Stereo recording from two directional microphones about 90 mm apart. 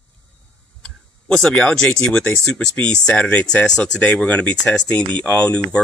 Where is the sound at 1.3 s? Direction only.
10° left (ahead or behind).